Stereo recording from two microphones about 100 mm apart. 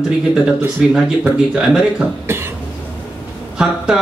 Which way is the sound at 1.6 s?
5° right (ahead or behind).